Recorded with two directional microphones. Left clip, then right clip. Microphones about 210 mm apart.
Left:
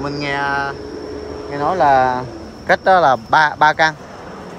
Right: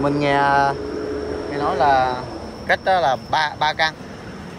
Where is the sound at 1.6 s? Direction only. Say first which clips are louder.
Left 4 dB; 30° left (ahead or behind).